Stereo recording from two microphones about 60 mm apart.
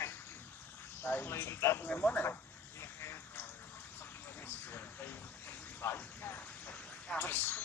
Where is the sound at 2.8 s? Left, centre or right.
Left.